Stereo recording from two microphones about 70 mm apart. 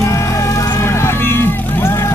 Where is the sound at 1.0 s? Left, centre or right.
Left.